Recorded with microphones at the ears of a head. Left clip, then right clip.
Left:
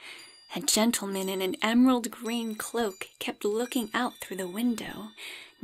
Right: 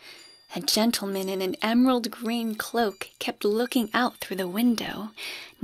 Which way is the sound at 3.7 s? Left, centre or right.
Right.